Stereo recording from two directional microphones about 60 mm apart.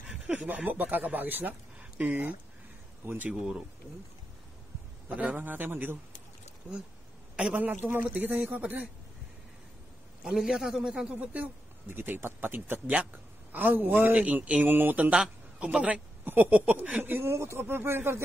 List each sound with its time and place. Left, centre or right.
0.5 s speech: right
3.3 s a man's voice: centre
5.0 s speech: right
7.3 s a woman's voice: centre
7.6 s speech: right
10.2 s a man's voice: centre
11.1 s speech: right
11.9 s a man's voice: right
14.1 s speech: right
17.3 s speech: right